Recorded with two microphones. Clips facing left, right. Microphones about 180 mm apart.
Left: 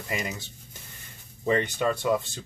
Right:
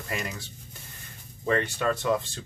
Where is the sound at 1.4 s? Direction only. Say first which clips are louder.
Left 1 dB; 15° left (ahead or behind).